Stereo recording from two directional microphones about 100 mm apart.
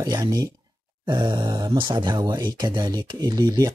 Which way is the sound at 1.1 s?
50° right (ahead or behind).